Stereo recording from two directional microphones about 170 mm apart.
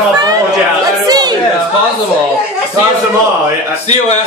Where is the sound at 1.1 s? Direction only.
25° right (ahead or behind).